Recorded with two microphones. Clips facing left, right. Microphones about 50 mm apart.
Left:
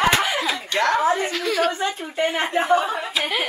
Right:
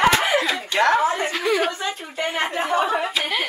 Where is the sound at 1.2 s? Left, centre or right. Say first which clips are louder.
Even; centre.